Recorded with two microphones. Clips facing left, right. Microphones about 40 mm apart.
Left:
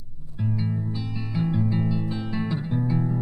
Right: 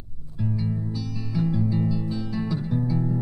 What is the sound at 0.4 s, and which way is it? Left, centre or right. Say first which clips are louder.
Music: even; left.